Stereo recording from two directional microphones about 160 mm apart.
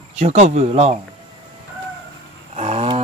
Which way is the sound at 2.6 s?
40° right (ahead or behind).